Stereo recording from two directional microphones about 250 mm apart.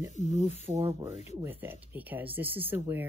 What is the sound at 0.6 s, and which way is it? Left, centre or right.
Speech, centre.